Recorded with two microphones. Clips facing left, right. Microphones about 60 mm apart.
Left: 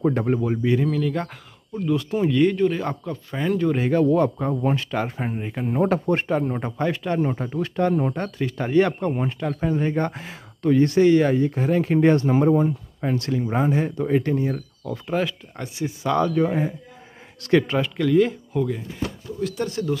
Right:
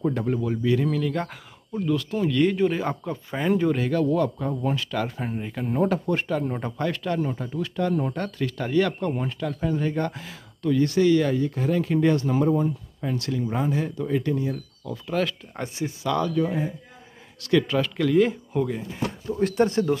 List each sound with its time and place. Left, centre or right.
0.0 s speech: left
0.8 s speech: centre
2.0 s speech: left
2.5 s speech: centre
3.7 s speech: left
5.4 s speech: centre
5.9 s speech: left
6.6 s speech: centre
7.2 s speech: left
8.1 s speech: centre; by 15.0 s left
15.5 s speech: centre
16.0 s speech: left
17.9 s speech: centre
19.3 s speech: right